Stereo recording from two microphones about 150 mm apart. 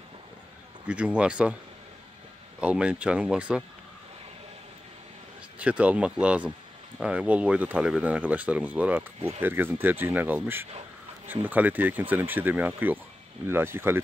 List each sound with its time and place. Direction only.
0.8 s speech: 10° right (ahead or behind)
2.6 s speech: 10° right (ahead or behind)
5.6 s speech: 10° right (ahead or behind)